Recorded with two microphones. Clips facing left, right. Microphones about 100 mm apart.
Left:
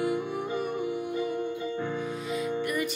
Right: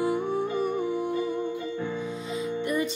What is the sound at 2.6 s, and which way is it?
Music, 25° right (ahead or behind).